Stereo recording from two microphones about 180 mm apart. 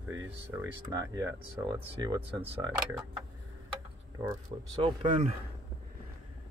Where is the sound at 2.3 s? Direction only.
10° right (ahead or behind).